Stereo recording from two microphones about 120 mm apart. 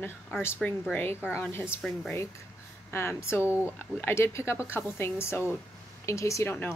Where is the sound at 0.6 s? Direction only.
5° left (ahead or behind).